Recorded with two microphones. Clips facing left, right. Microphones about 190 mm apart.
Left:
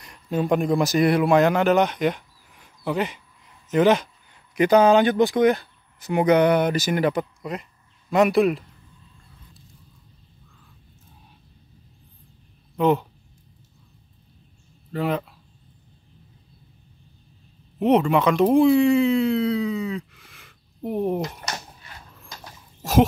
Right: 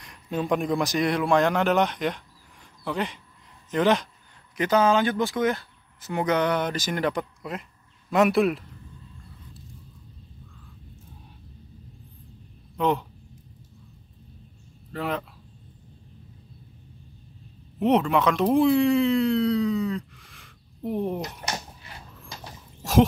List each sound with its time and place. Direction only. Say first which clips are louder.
0.0 s a man's voice: left 4 dB; centre (ahead or behind)
4.6 s a man's voice: left 5 dB; 15° left (ahead or behind)
12.7 s speech: left 4 dB; 5° left (ahead or behind)
14.9 s speech: left 5 dB; 5° left (ahead or behind)
17.7 s speech: left 3 dB; centre (ahead or behind)
21.5 s a sound: right 1 dB; 25° right (ahead or behind)